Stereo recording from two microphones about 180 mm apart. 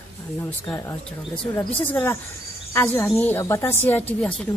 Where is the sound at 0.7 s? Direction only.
15° left (ahead or behind).